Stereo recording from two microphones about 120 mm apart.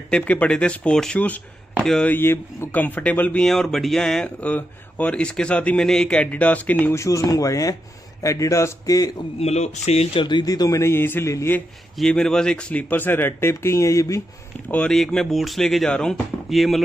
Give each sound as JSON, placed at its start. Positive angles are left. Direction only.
{"t": 0.1, "sound": "a man's voice", "side_deg": 10}
{"t": 9.4, "sound": "speech", "side_deg": 65}
{"t": 10.2, "sound": "a man's voice", "side_deg": 35}
{"t": 12.0, "sound": "speech", "side_deg": 5}
{"t": 14.7, "sound": "speech", "side_deg": 10}